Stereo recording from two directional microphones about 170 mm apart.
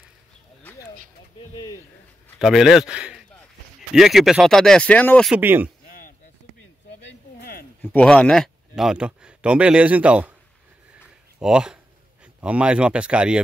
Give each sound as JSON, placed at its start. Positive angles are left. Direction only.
{"t": 2.3, "sound": "speech", "side_deg": 0}
{"t": 5.3, "sound": "speech", "side_deg": -10}
{"t": 7.0, "sound": "a sound", "side_deg": 80}
{"t": 7.8, "sound": "speech", "side_deg": 5}
{"t": 11.3, "sound": "speech", "side_deg": -5}